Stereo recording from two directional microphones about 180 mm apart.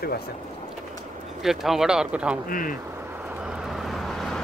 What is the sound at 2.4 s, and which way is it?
Speech, 50° left (ahead or behind).